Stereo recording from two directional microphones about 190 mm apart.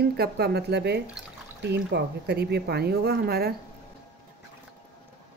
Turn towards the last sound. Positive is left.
turn(degrees=-55)  # may be behind; listen again after turning